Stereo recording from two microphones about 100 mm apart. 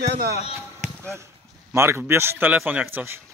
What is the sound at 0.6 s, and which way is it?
Speech, 25° right (ahead or behind).